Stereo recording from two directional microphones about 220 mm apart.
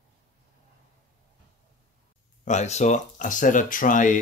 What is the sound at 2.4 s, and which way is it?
Speech, 30° left (ahead or behind).